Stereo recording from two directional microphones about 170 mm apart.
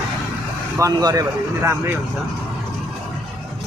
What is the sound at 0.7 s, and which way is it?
Speech, 20° right (ahead or behind).